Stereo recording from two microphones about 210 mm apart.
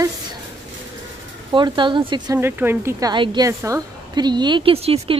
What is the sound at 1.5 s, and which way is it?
Speech, 20° right (ahead or behind).